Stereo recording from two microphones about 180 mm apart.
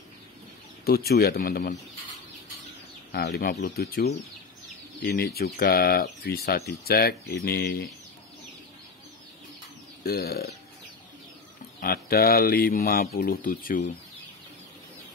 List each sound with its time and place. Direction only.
0.8 s speech: 60° left (ahead or behind)
3.1 s speech: 60° left (ahead or behind)
10.0 s speech: 60° left (ahead or behind)
11.8 s speech: 55° left (ahead or behind)